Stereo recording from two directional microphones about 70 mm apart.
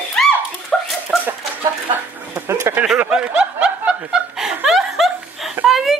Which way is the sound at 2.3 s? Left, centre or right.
Right.